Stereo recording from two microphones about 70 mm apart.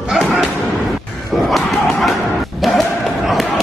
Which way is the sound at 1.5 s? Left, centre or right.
Centre.